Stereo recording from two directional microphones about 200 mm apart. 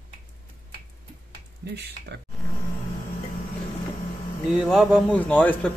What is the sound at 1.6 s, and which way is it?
Speech, 55° right (ahead or behind).